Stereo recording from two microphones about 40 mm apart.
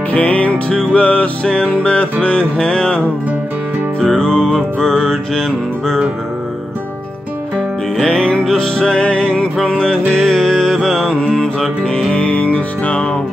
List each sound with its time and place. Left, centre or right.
0.1 s music: left
1.4 s music: left
4.2 s music: centre
8.1 s music: left; by 11.1 s centre
11.1 s mantra: centre
12.1 s music: left